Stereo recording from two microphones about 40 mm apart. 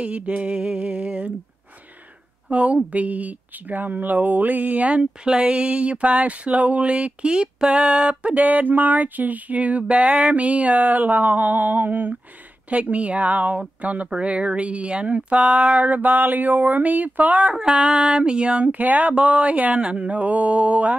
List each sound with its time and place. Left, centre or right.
0.0 s speech: right
2.5 s speech: right
5.2 s speech: right
8.4 s a sound: right
12.6 s speech: right
17.4 s speech: right
18.7 s speech: right
19.1 s speech: right